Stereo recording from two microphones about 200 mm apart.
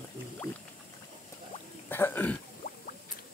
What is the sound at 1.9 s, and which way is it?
Throat clearing, 10° left (ahead or behind).